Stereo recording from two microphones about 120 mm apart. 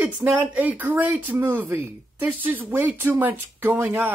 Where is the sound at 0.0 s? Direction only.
15° right (ahead or behind).